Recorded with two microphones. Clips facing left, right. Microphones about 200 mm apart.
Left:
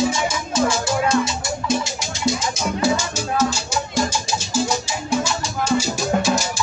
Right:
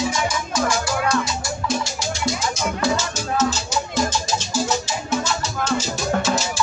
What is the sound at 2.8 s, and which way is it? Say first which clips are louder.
Music: left 4 dB; 10° left (ahead or behind).